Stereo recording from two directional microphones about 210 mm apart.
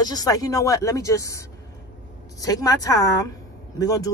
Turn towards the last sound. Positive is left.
turn(degrees=15)  # may be behind; listen again after turning